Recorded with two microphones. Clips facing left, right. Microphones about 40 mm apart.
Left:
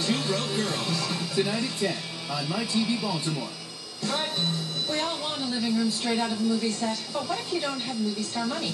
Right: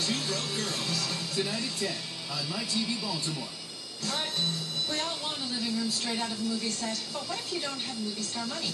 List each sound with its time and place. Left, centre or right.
0.0 s speech: centre
4.0 s music: left
5.4 s a woman's voice: centre